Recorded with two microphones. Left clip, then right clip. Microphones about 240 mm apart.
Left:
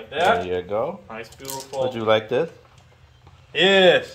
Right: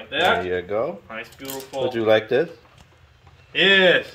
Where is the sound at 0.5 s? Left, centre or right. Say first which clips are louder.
Even; centre.